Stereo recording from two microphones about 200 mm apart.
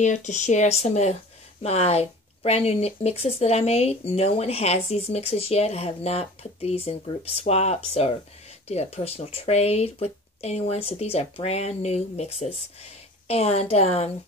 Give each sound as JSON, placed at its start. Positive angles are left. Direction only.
{"t": 0.0, "sound": "speech", "side_deg": 35}